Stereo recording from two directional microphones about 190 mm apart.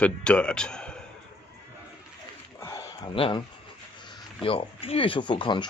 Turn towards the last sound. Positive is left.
turn(degrees=25)  # may be behind; listen again after turning